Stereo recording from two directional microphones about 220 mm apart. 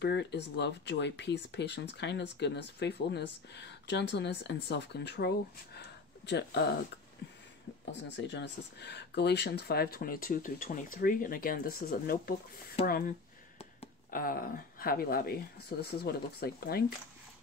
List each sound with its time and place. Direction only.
0.0 s speech: 50° left (ahead or behind)
7.8 s speech: 50° left (ahead or behind)
13.6 s a sound: 30° left (ahead or behind)
14.2 s speech: 40° left (ahead or behind)